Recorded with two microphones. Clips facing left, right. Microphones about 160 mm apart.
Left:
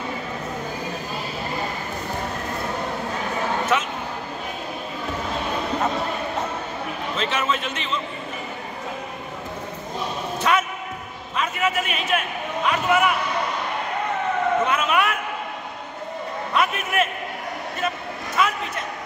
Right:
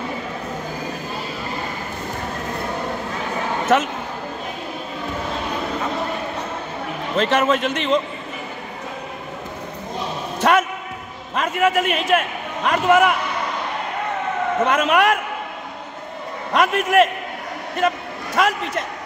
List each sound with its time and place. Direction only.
3.7 s a man's voice: 60° right (ahead or behind)
7.2 s a man's voice: 60° right (ahead or behind)
10.4 s a man's voice: 55° right (ahead or behind)
14.7 s a man's voice: 65° right (ahead or behind)
16.5 s a man's voice: 65° right (ahead or behind)
17.8 s a sound: 60° right (ahead or behind)